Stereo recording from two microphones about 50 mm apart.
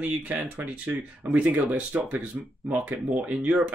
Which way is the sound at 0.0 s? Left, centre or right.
Right.